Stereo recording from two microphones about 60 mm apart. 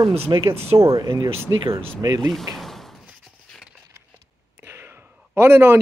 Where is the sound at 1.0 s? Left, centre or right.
Right.